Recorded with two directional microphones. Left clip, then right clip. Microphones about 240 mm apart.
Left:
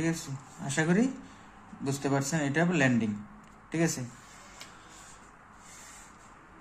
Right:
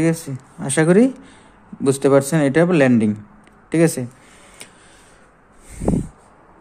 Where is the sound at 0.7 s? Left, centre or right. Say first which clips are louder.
Right 14 dB; right.